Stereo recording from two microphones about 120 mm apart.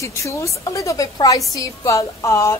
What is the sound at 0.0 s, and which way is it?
A woman's voice, 25° left (ahead or behind).